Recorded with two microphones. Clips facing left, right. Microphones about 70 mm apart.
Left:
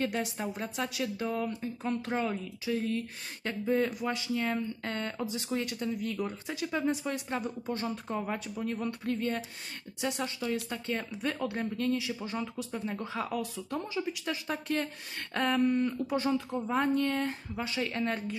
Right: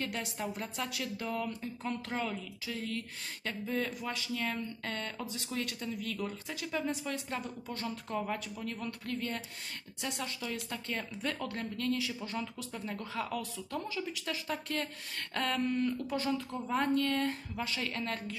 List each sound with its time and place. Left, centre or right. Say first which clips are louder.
0.1 s speech: left 4 dB; centre
0.7 s speech: left 4 dB; centre